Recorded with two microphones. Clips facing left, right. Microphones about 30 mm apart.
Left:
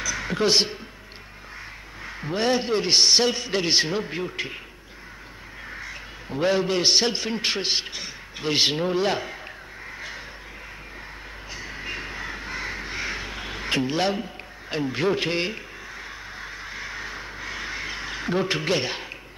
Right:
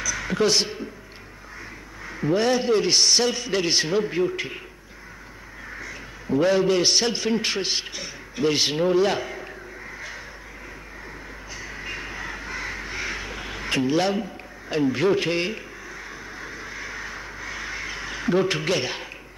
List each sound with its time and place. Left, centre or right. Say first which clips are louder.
0.0 s speech: right 1 dB; left
2.2 s a man's voice: right 3 dB; centre
5.8 s crow: even; left
6.3 s a man's voice: right 3 dB; centre
11.5 s crow: left 1 dB; left
15.0 s a man's voice: left 1 dB; centre
16.3 s a sound: even; left
18.4 s a man's voice: right 1 dB; centre